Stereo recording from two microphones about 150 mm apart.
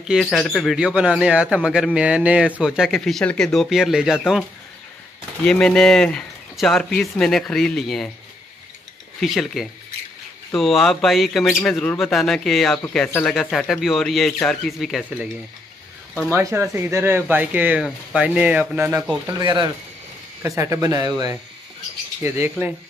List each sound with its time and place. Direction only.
0.0 s a man's voice: centre (ahead or behind)
0.7 s a man's voice: 5° right (ahead or behind)
5.4 s a man's voice: 5° left (ahead or behind)
9.2 s a man's voice: centre (ahead or behind)
16.3 s speech: 15° right (ahead or behind)
22.2 s speech: 15° right (ahead or behind)